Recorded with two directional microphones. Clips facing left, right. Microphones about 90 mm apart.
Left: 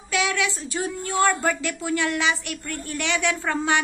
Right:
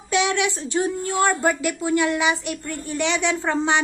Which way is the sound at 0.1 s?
25° right (ahead or behind).